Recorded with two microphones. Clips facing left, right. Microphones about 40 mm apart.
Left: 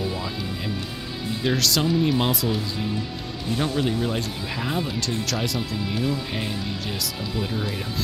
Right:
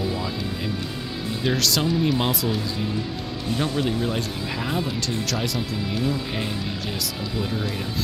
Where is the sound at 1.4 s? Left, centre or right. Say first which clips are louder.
Even; centre.